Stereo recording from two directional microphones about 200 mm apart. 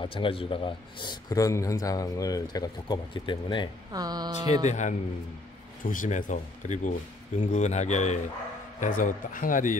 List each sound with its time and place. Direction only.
0.0 s a man's voice: 25° left (ahead or behind)
3.9 s speech: 20° right (ahead or behind)
4.6 s speech: 35° left (ahead or behind)